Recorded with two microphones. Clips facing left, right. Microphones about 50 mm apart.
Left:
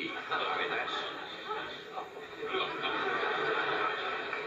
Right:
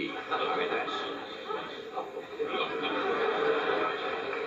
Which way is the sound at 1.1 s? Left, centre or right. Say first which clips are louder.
Right 3 dB; centre.